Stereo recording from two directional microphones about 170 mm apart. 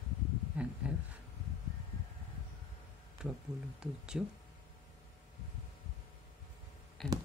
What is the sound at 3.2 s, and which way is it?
Speech, 5° right (ahead or behind).